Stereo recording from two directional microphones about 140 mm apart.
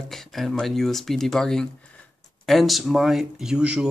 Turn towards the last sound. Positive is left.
turn(degrees=-5)  # may be behind; listen again after turning